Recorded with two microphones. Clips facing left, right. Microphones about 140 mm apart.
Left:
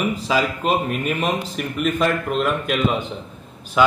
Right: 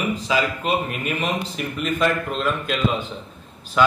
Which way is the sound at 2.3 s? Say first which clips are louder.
Left 3 dB; 5° left (ahead or behind).